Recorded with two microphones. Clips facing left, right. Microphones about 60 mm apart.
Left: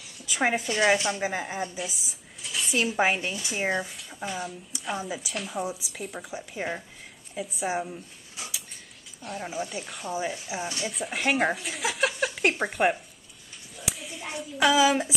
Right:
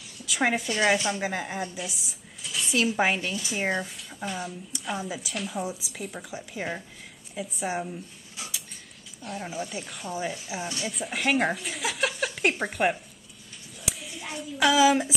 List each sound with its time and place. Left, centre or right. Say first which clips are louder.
0.3 s a woman's voice: even; centre
3.2 s speech: right 1 dB; left
3.5 s speech: left 1 dB; centre
9.2 s speech: left 1 dB; centre
10.1 s speech: left 1 dB; centre
13.8 s a sound: left 1 dB; centre
14.8 s speech: right 4 dB; centre